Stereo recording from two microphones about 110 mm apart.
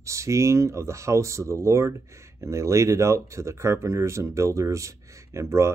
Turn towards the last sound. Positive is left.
turn(degrees=-25)  # may be behind; listen again after turning